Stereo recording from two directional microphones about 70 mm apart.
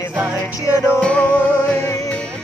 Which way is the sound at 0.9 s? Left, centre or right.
Centre.